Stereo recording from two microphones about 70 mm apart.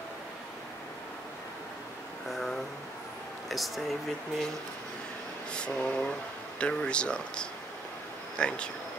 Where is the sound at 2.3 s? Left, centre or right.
Centre.